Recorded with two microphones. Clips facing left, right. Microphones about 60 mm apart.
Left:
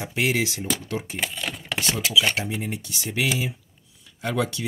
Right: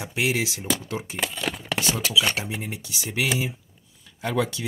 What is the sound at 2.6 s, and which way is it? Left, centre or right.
Speech, right.